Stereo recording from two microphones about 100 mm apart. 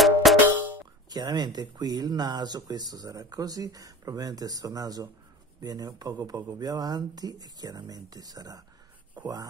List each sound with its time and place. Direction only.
0.0 s cowbell: centre (ahead or behind)
1.1 s speech: 45° right (ahead or behind)